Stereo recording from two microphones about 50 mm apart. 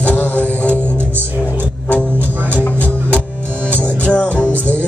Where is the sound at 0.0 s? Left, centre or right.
Left.